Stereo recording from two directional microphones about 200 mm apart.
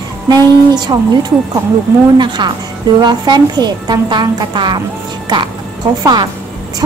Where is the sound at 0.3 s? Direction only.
20° right (ahead or behind).